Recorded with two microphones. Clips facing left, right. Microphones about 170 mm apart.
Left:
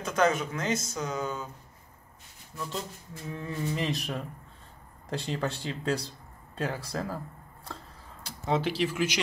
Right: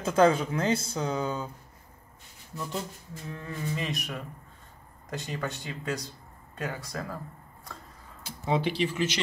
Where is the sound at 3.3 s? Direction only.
20° left (ahead or behind).